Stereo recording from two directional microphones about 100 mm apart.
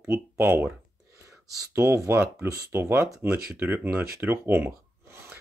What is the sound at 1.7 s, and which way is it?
Speech, 20° right (ahead or behind).